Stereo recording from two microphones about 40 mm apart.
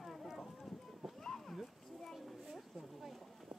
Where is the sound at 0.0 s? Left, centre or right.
Centre.